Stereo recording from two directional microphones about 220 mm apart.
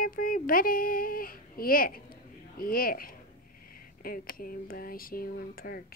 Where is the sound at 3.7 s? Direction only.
40° left (ahead or behind).